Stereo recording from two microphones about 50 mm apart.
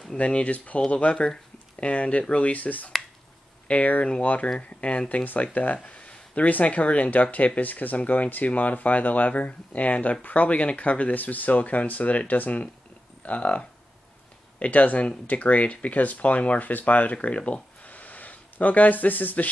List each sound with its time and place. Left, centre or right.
0.2 s speech: left
5.2 s speech: left